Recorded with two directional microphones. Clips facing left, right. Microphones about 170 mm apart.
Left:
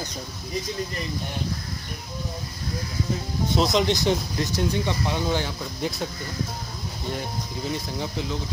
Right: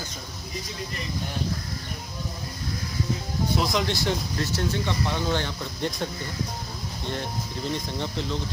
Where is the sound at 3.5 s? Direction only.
20° left (ahead or behind); by 6.1 s 5° left (ahead or behind).